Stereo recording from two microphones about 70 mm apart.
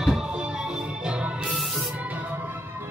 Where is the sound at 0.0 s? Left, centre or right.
Centre; by 2.5 s right.